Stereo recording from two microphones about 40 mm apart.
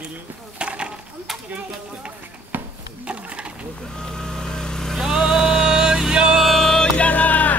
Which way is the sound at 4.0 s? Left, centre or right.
Centre.